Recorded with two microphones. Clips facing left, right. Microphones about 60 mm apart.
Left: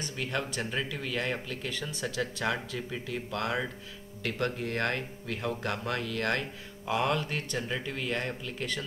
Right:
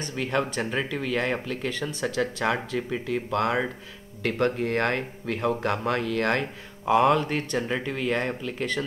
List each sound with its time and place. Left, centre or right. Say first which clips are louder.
0.0 s speech: right 7 dB; right